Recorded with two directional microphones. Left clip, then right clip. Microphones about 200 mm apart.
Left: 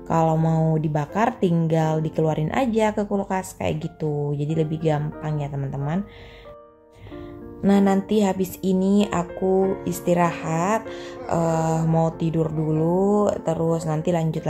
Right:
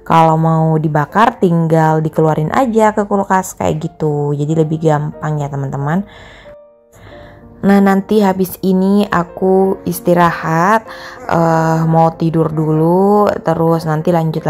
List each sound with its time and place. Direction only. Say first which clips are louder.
0.1 s speech: right 11 dB; 10° right (ahead or behind)
7.6 s speech: right 8 dB; 15° right (ahead or behind)